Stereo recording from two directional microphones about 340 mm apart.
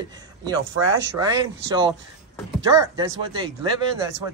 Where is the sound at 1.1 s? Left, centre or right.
Centre.